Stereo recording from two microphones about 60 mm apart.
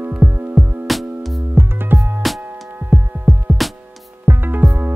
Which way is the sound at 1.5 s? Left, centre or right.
Right.